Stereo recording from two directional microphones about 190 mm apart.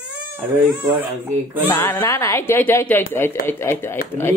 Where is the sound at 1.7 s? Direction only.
10° left (ahead or behind).